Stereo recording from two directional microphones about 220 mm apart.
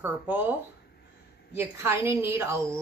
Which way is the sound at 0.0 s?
10° right (ahead or behind).